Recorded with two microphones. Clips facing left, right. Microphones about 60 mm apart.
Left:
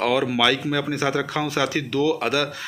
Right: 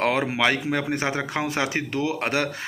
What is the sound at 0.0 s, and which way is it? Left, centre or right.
Speech, right.